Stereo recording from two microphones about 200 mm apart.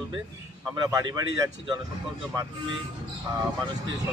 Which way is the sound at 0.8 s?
15° right (ahead or behind).